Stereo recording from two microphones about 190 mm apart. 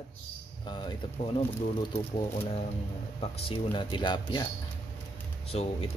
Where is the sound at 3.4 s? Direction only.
25° left (ahead or behind).